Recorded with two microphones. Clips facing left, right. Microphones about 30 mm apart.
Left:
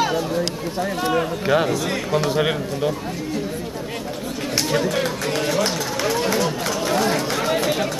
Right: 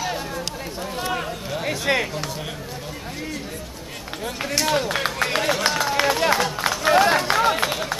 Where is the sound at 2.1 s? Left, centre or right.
Left.